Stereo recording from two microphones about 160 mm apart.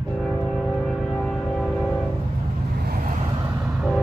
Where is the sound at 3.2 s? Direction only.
30° right (ahead or behind).